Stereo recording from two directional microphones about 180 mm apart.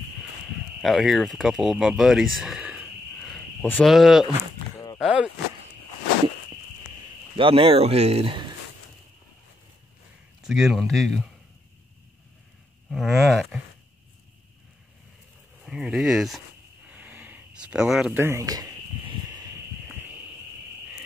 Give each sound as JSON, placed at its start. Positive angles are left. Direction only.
{"t": 0.7, "sound": "speech", "side_deg": 0}
{"t": 2.3, "sound": "a sound", "side_deg": 0}
{"t": 3.9, "sound": "speech", "side_deg": 0}
{"t": 7.3, "sound": "speech", "side_deg": -30}
{"t": 10.4, "sound": "speech", "side_deg": 0}
{"t": 12.9, "sound": "speech", "side_deg": 0}
{"t": 15.6, "sound": "speech", "side_deg": -5}
{"t": 16.9, "sound": "a sound", "side_deg": -10}